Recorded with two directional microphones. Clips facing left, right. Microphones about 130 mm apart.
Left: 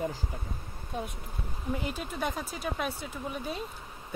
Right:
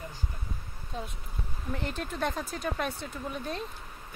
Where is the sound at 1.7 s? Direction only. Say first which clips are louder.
Left 1 dB; 10° left (ahead or behind).